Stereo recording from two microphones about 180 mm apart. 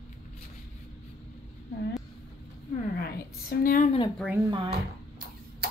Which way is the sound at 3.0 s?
55° left (ahead or behind).